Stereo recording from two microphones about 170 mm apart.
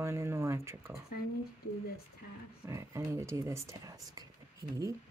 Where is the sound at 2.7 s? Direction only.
15° right (ahead or behind).